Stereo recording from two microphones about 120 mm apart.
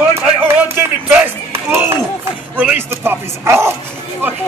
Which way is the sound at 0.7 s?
15° right (ahead or behind).